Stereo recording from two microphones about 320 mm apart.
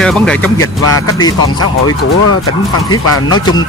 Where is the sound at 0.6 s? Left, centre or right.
Left.